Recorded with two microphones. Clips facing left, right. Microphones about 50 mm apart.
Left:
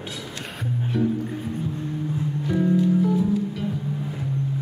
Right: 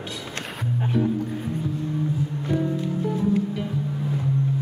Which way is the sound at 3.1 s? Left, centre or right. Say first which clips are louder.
Left 1 dB; right.